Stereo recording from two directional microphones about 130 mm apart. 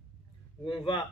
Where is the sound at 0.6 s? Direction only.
40° left (ahead or behind).